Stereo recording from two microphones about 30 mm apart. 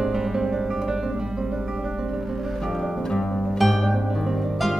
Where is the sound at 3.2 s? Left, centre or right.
Centre.